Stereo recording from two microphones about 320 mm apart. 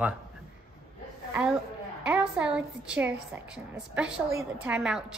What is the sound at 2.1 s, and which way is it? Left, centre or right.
A woman's voice, centre.